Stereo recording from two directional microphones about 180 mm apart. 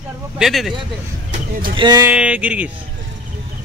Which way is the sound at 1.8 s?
25° right (ahead or behind).